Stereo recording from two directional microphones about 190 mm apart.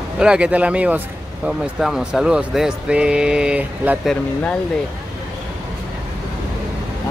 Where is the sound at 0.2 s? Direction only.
5° right (ahead or behind).